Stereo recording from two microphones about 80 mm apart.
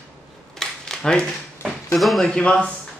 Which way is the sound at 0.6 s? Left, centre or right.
Centre.